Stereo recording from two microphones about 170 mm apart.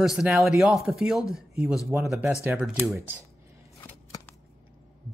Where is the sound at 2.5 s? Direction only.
5° right (ahead or behind).